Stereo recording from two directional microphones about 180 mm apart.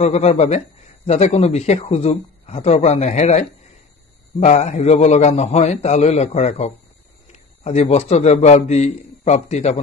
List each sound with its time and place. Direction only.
0.0 s a man's voice: 35° left (ahead or behind)